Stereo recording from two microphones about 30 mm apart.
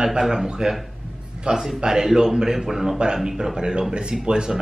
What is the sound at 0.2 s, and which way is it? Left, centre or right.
Speech, centre.